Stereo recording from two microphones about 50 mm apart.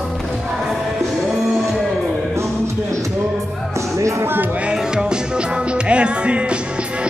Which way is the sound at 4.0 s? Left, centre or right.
Right.